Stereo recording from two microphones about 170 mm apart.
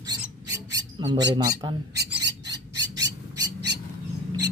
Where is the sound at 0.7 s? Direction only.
25° right (ahead or behind).